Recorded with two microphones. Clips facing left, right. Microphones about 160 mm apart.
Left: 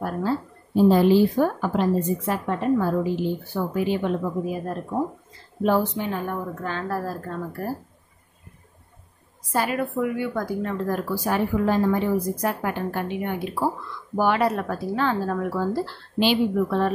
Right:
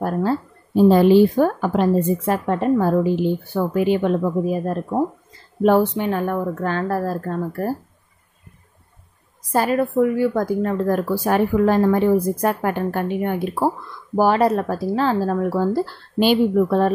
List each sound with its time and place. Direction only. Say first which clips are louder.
0.0 s speech: right 4 dB; 50° right (ahead or behind)
0.8 s speech: right 4 dB; 65° right (ahead or behind); by 3.0 s 45° right (ahead or behind)
3.5 s speech: right 6 dB; 65° right (ahead or behind)
4.5 s speech: right 6 dB; 45° right (ahead or behind)
5.6 s speech: right 6 dB; 65° right (ahead or behind); by 7.7 s 45° right (ahead or behind)
9.5 s speech: right 6 dB; 40° right (ahead or behind)